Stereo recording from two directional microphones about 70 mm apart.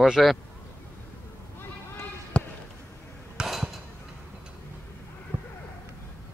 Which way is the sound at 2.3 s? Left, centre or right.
Centre.